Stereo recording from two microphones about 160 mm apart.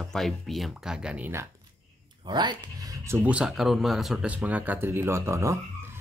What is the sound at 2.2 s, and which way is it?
Speech, 25° right (ahead or behind).